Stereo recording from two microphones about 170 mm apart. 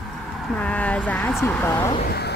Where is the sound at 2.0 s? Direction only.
65° left (ahead or behind).